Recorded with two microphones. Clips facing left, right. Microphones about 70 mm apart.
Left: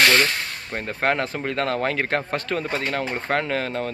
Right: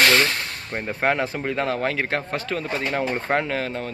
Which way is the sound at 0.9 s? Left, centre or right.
Centre.